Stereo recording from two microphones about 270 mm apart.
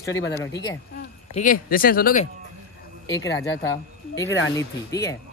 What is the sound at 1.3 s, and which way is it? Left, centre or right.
Speech, left.